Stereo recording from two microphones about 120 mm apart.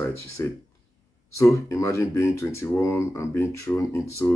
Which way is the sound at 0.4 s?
25° left (ahead or behind).